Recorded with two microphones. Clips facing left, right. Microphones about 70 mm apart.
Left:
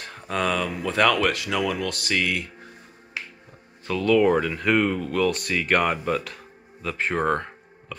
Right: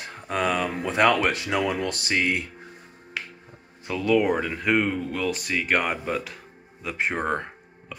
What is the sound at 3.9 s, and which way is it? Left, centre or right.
Speech, centre.